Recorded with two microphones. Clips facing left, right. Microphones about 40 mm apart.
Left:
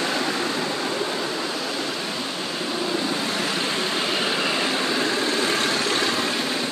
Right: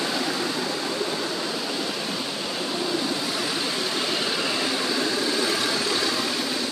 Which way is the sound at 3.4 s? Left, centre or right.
Left.